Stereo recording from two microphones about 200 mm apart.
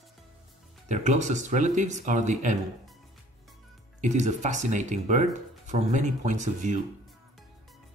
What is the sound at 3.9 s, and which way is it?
Speech, 35° right (ahead or behind).